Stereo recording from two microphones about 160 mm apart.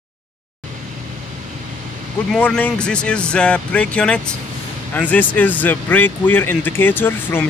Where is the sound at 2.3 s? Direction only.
5° left (ahead or behind).